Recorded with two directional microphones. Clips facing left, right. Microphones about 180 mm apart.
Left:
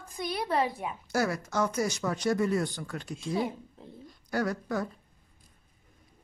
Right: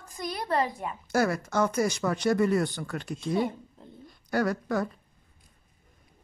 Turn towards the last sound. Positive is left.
turn(degrees=-65)  # may be behind; listen again after turning